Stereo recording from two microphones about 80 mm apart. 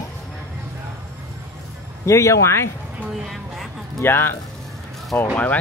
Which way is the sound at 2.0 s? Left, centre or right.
Left.